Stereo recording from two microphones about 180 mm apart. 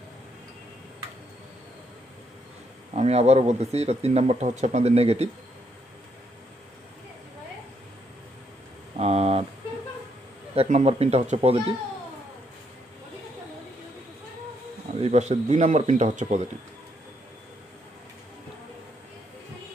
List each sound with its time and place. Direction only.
2.9 s speech: 35° right (ahead or behind)
8.9 s a sound: 35° right (ahead or behind)
10.5 s speech: 35° right (ahead or behind)
15.0 s speech: 40° right (ahead or behind)